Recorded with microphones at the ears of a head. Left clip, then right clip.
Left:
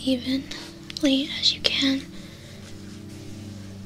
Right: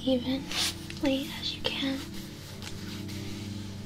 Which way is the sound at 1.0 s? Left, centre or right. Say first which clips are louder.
Left 9 dB; left.